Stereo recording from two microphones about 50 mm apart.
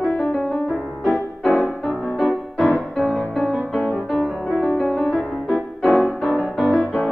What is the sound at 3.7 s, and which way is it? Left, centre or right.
Music, left.